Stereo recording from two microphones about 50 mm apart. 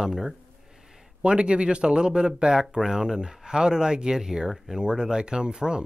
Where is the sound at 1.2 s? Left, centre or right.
Right.